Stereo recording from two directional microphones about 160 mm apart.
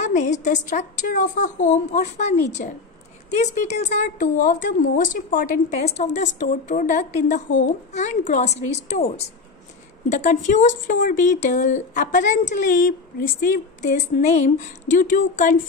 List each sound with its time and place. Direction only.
0.0 s speech: 50° left (ahead or behind)
2.6 s a woman's voice: 55° left (ahead or behind)